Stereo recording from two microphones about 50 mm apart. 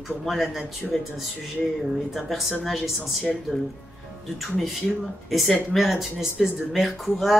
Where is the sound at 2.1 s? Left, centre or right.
Centre.